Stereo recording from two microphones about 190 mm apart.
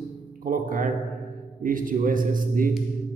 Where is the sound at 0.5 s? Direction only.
45° right (ahead or behind).